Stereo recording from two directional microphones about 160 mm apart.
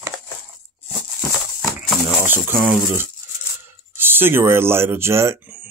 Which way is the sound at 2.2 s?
15° right (ahead or behind).